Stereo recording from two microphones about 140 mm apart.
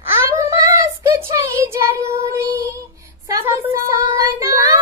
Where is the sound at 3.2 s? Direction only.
20° right (ahead or behind).